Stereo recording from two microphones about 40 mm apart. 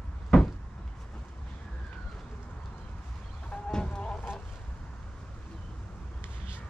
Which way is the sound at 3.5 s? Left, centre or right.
Left.